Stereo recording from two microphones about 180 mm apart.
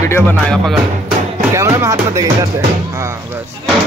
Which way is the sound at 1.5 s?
15° right (ahead or behind).